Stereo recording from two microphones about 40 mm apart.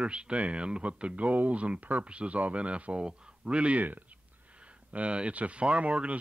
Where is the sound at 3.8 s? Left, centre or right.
Right.